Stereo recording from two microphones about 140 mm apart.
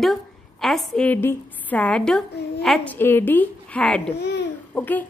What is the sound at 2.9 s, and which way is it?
A child's voice, 15° left (ahead or behind).